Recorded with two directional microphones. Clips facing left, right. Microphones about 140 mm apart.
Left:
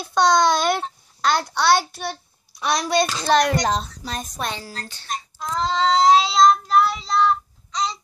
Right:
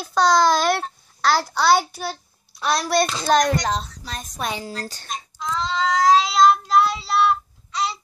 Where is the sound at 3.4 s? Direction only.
10° left (ahead or behind).